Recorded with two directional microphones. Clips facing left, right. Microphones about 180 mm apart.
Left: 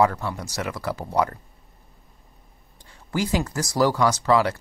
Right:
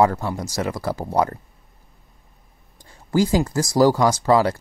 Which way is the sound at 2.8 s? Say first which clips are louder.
Right 7 dB; 40° right (ahead or behind).